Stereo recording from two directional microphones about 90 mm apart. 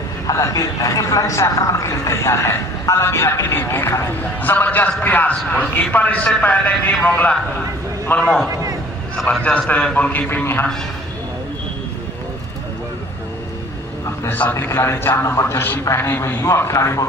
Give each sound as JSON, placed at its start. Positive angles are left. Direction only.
{"t": 0.3, "sound": "a man's voice", "side_deg": 40}
{"t": 14.2, "sound": "a man's voice", "side_deg": 20}